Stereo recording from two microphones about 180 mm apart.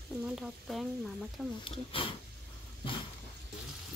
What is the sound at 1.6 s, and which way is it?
Speech, 30° left (ahead or behind).